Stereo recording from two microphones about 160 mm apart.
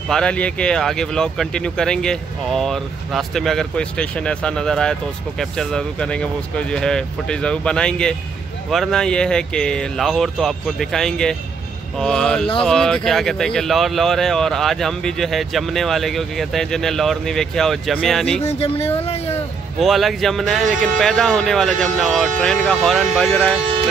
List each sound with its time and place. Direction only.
0.1 s speech: 5° left (ahead or behind)
18.4 s speech: 40° left (ahead or behind)
19.8 s speech: centre (ahead or behind)